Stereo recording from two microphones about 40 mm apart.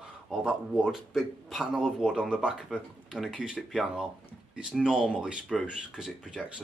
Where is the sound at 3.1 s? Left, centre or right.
Centre.